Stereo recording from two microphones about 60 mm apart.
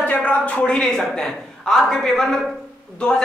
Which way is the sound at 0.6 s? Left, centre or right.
Centre.